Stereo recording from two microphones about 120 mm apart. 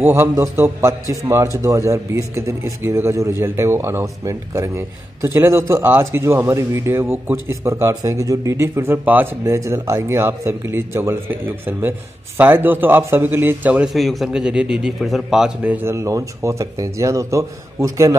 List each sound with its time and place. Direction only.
0.1 s a man's voice: 20° right (ahead or behind)
13.9 s a man's voice: centre (ahead or behind)
15.6 s a man's voice: 15° right (ahead or behind)